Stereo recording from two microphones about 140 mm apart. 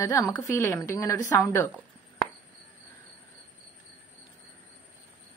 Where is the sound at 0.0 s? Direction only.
25° left (ahead or behind).